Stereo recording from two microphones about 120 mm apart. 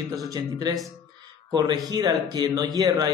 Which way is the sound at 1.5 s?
30° right (ahead or behind).